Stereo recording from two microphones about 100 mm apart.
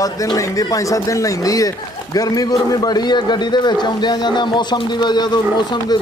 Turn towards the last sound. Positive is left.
turn(degrees=45)  # may be behind; listen again after turning